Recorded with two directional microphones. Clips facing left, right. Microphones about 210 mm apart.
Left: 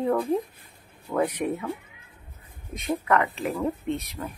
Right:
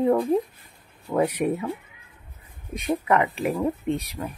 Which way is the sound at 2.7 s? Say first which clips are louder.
Right 2 dB; 15° right (ahead or behind).